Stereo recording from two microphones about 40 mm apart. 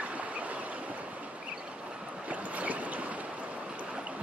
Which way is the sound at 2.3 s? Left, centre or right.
Right.